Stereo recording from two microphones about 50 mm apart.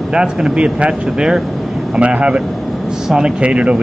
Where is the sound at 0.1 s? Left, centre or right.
Centre.